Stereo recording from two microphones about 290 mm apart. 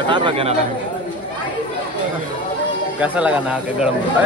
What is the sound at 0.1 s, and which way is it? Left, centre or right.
Speech, centre.